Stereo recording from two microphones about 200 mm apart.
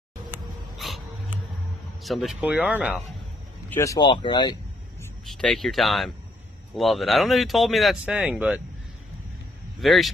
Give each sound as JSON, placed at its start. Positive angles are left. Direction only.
{"t": 0.7, "sound": "a sound", "side_deg": 0}
{"t": 2.0, "sound": "speech", "side_deg": 0}
{"t": 3.7, "sound": "speech", "side_deg": 15}
{"t": 5.3, "sound": "speech", "side_deg": 0}
{"t": 9.8, "sound": "speech", "side_deg": 0}